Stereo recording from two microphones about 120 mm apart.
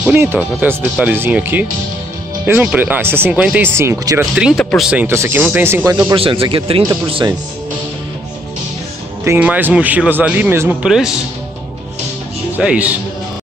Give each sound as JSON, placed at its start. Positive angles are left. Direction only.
{"t": 0.0, "sound": "speech", "side_deg": -15}
{"t": 4.2, "sound": "speech", "side_deg": -5}
{"t": 5.0, "sound": "speech", "side_deg": -20}
{"t": 6.1, "sound": "speech", "side_deg": -50}
{"t": 9.2, "sound": "speech", "side_deg": -15}
{"t": 10.8, "sound": "speech", "side_deg": -5}
{"t": 12.5, "sound": "speech", "side_deg": -10}